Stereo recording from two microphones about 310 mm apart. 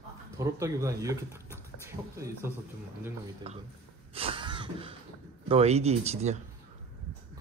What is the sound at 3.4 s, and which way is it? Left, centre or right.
Speech, right.